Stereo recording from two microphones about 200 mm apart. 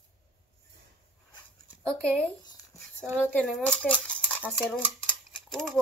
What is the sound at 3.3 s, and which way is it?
Dishes, 5° left (ahead or behind).